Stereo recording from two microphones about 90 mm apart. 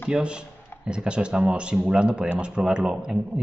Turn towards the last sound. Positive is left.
turn(degrees=-10)  # may be behind; listen again after turning